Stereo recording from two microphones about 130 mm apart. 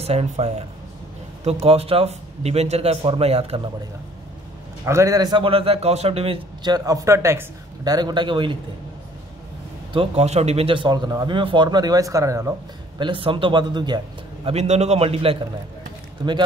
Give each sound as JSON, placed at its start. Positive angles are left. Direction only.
{"t": 0.0, "sound": "a man's voice", "side_deg": -50}
{"t": 4.8, "sound": "a man's voice", "side_deg": -25}
{"t": 9.9, "sound": "a man's voice", "side_deg": -55}
{"t": 13.0, "sound": "a man's voice", "side_deg": -40}
{"t": 14.5, "sound": "a man's voice", "side_deg": -55}